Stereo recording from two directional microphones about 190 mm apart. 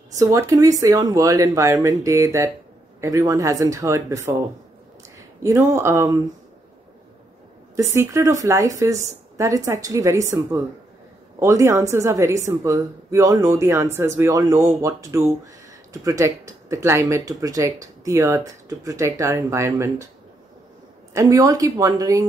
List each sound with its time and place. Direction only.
0.2 s speech: 15° right (ahead or behind)
5.4 s speech: 15° right (ahead or behind)
7.7 s speech: 15° right (ahead or behind)
21.1 s speech: 15° right (ahead or behind)